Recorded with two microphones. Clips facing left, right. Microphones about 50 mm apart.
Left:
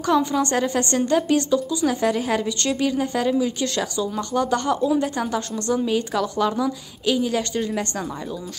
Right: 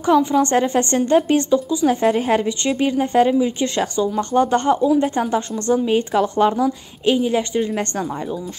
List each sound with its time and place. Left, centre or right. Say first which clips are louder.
0.0 s a woman's voice: right 4 dB; right